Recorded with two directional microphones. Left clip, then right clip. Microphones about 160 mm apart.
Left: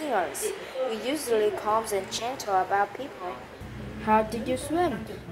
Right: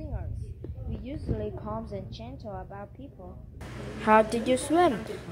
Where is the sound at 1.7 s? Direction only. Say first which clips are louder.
Left 11 dB; 5° left (ahead or behind).